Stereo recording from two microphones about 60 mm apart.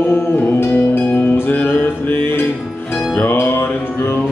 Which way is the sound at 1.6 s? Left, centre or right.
Left.